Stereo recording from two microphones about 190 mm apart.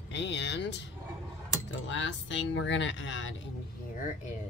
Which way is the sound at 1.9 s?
75° left (ahead or behind).